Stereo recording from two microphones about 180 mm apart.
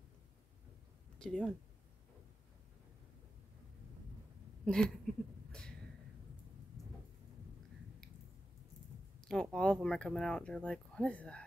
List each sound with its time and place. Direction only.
1.1 s speech: 5° left (ahead or behind)
4.6 s a sound: 5° left (ahead or behind)
9.3 s speech: 5° left (ahead or behind)